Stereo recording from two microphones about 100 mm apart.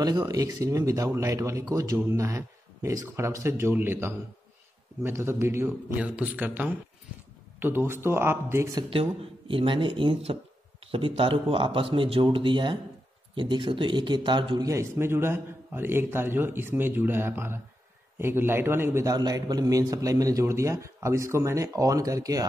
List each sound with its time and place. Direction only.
0.3 s a man's voice: 40° right (ahead or behind)
5.9 s a man's voice: 15° right (ahead or behind)
8.9 s a man's voice: 65° right (ahead or behind)
14.7 s a man's voice: 25° right (ahead or behind)
19.0 s a man's voice: 40° right (ahead or behind)